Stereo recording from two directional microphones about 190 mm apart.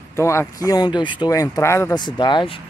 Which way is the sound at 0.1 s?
15° left (ahead or behind).